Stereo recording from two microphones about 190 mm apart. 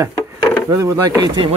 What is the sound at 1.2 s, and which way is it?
Speech, 30° right (ahead or behind).